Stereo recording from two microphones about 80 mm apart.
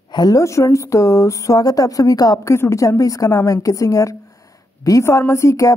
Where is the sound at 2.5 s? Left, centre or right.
Left.